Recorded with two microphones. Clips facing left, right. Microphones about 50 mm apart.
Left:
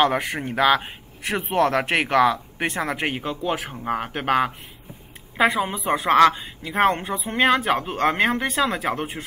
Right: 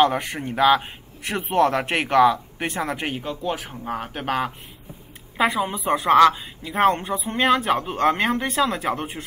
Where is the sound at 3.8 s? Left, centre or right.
Left.